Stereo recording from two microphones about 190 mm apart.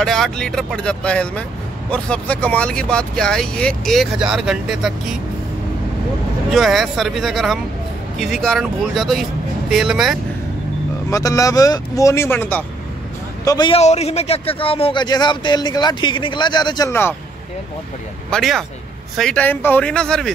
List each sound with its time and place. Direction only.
0.0 s speech: centre (ahead or behind)
6.5 s speech: centre (ahead or behind)
11.1 s speech: 15° left (ahead or behind)
13.5 s a man's voice: 25° left (ahead or behind)
18.3 s speech: centre (ahead or behind)